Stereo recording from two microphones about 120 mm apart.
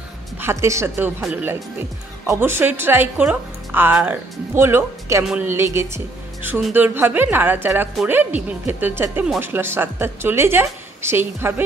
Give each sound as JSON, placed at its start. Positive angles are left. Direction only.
{"t": 0.4, "sound": "a woman's voice", "side_deg": -20}
{"t": 5.2, "sound": "a woman's voice", "side_deg": -5}
{"t": 5.5, "sound": "a woman's voice", "side_deg": -20}